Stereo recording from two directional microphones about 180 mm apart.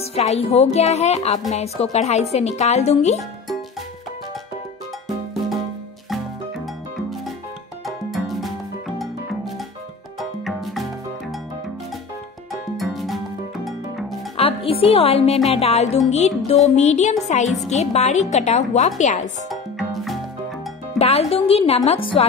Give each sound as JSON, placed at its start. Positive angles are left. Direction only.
{"t": 0.0, "sound": "speech", "side_deg": 35}
{"t": 7.8, "sound": "music", "side_deg": 0}
{"t": 12.7, "sound": "music", "side_deg": 0}
{"t": 14.3, "sound": "music", "side_deg": 30}
{"t": 15.3, "sound": "speech", "side_deg": 0}
{"t": 15.6, "sound": "speech", "side_deg": 35}
{"t": 19.5, "sound": "music", "side_deg": 0}
{"t": 21.0, "sound": "speech", "side_deg": 35}